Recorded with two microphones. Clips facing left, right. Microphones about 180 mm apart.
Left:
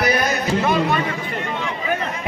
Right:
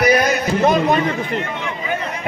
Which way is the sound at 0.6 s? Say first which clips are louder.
Right 5 dB; 45° right (ahead or behind).